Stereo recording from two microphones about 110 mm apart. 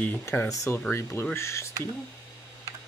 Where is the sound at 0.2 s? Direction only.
25° left (ahead or behind).